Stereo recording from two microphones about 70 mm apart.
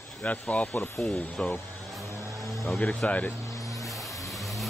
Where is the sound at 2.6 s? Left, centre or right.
Left.